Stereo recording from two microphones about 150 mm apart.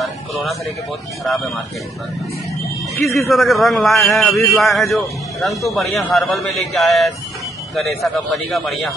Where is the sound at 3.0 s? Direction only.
Centre (ahead or behind).